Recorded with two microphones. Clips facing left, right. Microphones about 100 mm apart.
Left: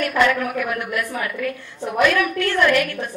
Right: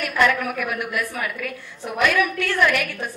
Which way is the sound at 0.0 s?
5° right (ahead or behind).